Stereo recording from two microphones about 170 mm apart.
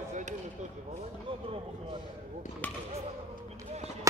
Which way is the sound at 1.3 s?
30° right (ahead or behind).